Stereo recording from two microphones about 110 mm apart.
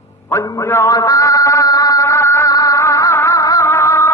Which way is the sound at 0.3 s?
30° left (ahead or behind).